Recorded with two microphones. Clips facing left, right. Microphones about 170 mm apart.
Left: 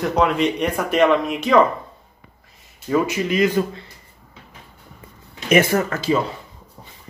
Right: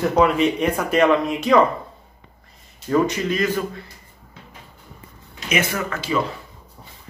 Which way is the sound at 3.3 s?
15° left (ahead or behind).